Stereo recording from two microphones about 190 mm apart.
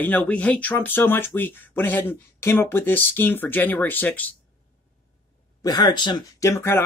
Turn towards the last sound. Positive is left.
turn(degrees=15)  # may be behind; listen again after turning